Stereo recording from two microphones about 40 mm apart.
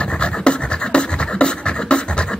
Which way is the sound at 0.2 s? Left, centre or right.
Left.